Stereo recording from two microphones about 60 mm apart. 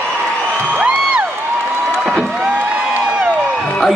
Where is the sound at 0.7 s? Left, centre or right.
Right.